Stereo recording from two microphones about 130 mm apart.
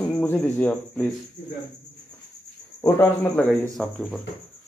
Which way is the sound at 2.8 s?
15° left (ahead or behind).